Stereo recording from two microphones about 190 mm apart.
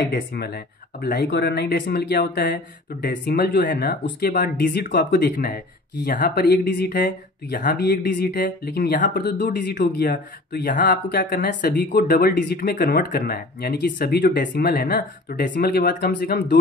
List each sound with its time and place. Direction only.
0.0 s speech: 55° left (ahead or behind)